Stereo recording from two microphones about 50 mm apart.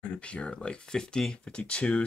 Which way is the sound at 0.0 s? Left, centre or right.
Left.